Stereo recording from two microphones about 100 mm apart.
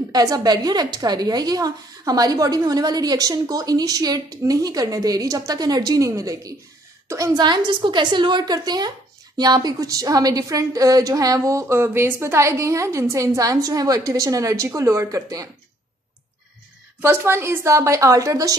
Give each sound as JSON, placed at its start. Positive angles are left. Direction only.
{"t": 0.1, "sound": "a woman's voice", "side_deg": -40}
{"t": 11.6, "sound": "a woman's voice", "side_deg": -25}
{"t": 17.0, "sound": "a woman's voice", "side_deg": -25}